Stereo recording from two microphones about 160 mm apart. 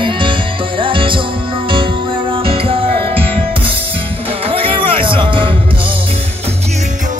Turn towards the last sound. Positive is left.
turn(degrees=-35)  # may be behind; listen again after turning